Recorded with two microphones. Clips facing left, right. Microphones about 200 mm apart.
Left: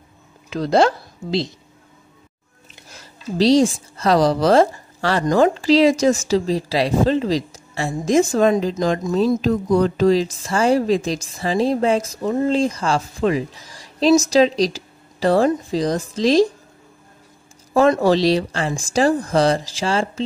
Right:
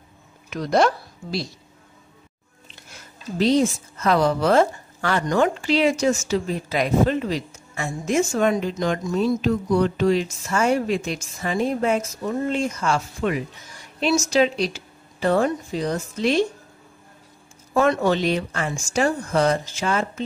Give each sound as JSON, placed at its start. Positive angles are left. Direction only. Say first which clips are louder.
{"t": 0.5, "sound": "a woman's voice", "louder": "left 3 dB", "side_deg": 30}
{"t": 2.9, "sound": "a woman's voice", "louder": "left 4 dB", "side_deg": 35}
{"t": 17.7, "sound": "speech", "louder": "left 4 dB", "side_deg": 35}